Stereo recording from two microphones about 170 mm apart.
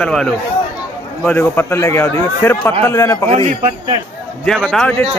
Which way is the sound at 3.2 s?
35° right (ahead or behind).